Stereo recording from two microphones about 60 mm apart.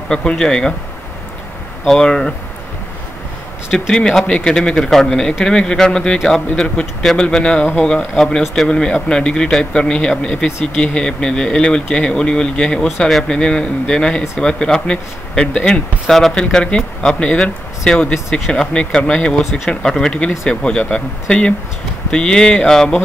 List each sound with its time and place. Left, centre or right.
0.1 s a man's voice: centre
1.9 s a man's voice: centre
3.9 s a man's voice: centre